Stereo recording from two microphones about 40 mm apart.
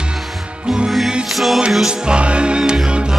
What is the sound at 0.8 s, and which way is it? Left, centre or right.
Music, centre.